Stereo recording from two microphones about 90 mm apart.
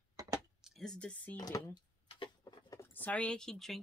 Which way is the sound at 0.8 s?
10° left (ahead or behind).